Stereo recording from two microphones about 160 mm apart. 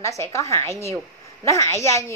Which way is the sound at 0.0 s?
20° left (ahead or behind).